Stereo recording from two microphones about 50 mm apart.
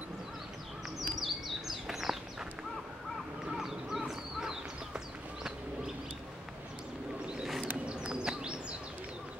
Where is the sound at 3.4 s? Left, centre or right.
Centre.